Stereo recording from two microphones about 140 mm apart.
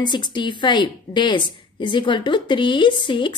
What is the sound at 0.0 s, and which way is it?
Speech, 30° left (ahead or behind).